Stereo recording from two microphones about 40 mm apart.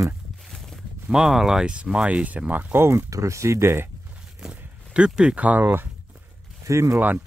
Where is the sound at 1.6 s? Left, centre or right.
Right.